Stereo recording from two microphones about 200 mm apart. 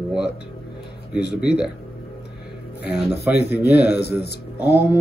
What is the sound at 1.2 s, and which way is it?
Speech, 55° left (ahead or behind).